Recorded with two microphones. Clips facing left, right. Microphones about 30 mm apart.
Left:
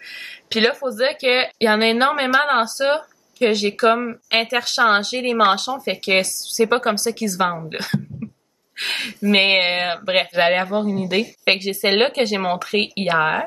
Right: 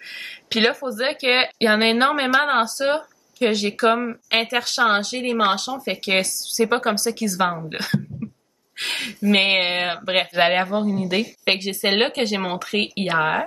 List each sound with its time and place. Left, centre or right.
0.2 s speech: centre
3.8 s speech: centre
5.0 s speech: left
5.4 s speech: centre
7.8 s hiccup: centre
8.8 s speech: centre